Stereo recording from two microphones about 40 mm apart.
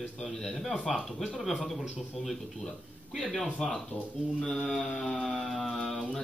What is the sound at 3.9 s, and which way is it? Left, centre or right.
Speech, left.